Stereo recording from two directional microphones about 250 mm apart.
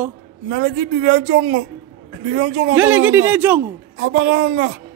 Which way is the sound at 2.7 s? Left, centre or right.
Centre.